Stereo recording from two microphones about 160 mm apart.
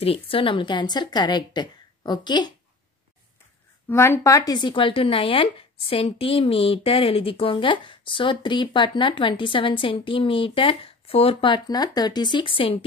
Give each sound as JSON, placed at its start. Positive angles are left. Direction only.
{"t": 0.0, "sound": "a woman's voice", "side_deg": 35}
{"t": 3.9, "sound": "speech", "side_deg": 15}